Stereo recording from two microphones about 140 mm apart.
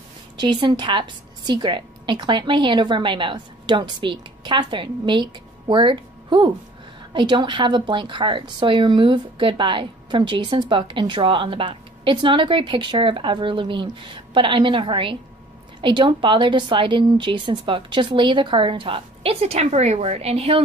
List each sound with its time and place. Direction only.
0.4 s a woman's voice: 35° right (ahead or behind)